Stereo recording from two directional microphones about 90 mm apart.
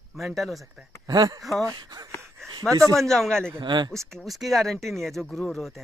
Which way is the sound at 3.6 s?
55° right (ahead or behind).